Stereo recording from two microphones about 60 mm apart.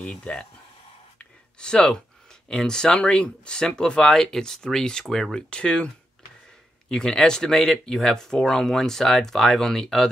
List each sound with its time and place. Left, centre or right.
0.0 s speech: centre
1.6 s speech: centre
6.9 s speech: centre